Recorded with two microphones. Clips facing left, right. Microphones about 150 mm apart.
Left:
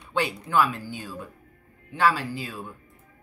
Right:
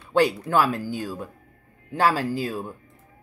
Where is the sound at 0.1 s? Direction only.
40° right (ahead or behind).